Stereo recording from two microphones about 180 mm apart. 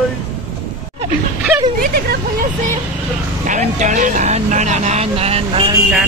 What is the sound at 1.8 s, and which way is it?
Speech, 55° right (ahead or behind).